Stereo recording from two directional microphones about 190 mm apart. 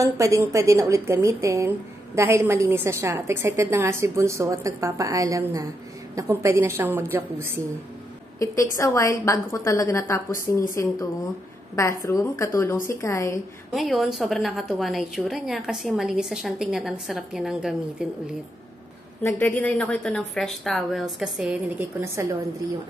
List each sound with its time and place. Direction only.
0.0 s a woman's voice: 15° right (ahead or behind)
8.4 s a woman's voice: 15° left (ahead or behind)
12.0 s a woman's voice: 15° left (ahead or behind)
13.7 s a woman's voice: centre (ahead or behind)
19.2 s a woman's voice: 10° left (ahead or behind); by 22.4 s 15° right (ahead or behind)